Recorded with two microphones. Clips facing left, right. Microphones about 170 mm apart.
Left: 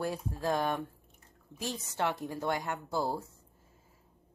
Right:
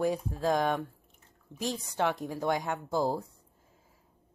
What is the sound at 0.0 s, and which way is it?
Speech, 15° right (ahead or behind).